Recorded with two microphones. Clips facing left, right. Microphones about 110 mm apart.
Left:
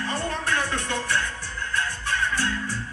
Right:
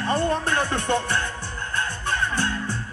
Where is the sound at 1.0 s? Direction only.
35° right (ahead or behind).